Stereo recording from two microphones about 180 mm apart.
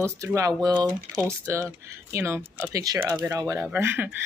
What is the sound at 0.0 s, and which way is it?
Speech, 15° right (ahead or behind).